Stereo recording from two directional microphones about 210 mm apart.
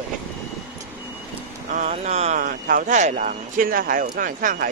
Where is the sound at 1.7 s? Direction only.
35° right (ahead or behind).